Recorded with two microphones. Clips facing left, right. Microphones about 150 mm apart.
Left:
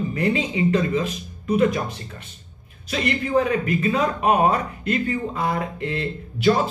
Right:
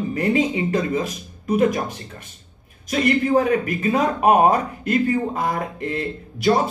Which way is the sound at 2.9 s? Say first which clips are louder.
Right 4 dB; 40° right (ahead or behind).